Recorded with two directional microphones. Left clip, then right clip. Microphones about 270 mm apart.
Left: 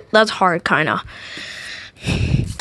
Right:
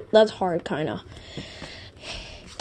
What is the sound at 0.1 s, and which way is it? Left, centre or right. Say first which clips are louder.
Speech: left 5 dB; left.